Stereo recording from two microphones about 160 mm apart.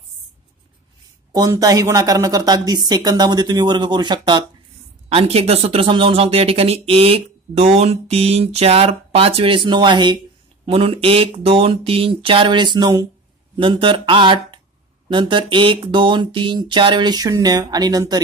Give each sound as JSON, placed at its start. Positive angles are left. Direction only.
{"t": 1.3, "sound": "a woman's voice", "side_deg": -25}